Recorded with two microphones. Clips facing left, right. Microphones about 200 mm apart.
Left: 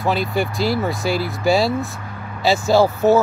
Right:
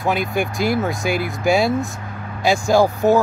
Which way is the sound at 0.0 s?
15° right (ahead or behind).